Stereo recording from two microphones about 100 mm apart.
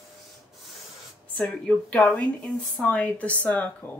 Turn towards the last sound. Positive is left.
turn(degrees=15)  # may be behind; listen again after turning